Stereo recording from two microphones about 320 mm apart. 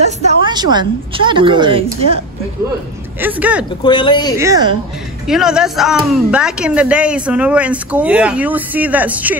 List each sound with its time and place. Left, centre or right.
0.0 s a woman's voice: centre
3.2 s a woman's voice: centre
3.8 s speech: centre
4.4 s a woman's voice: centre